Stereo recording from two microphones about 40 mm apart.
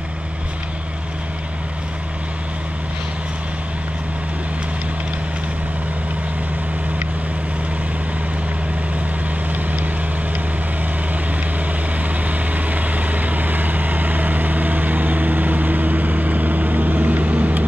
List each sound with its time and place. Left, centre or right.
12.3 s vehicle: right